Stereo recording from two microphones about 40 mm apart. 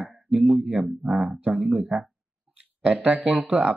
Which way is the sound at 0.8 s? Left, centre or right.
Right.